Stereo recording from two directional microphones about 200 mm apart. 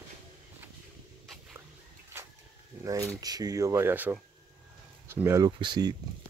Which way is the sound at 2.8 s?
15° right (ahead or behind).